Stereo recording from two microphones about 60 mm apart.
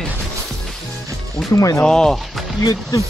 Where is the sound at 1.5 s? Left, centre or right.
Left.